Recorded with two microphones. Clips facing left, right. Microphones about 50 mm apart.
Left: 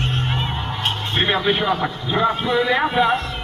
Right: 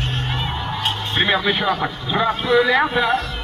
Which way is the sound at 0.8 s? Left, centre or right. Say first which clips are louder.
Even; left.